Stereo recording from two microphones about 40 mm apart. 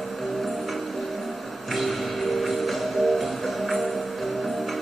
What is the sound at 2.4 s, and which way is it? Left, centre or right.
Music, centre.